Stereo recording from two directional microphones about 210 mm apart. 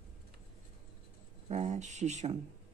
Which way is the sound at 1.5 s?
35° right (ahead or behind).